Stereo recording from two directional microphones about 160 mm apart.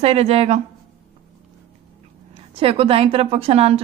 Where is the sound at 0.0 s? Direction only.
40° right (ahead or behind).